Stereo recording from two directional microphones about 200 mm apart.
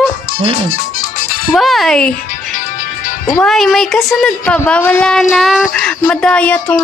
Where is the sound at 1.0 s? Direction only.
45° left (ahead or behind).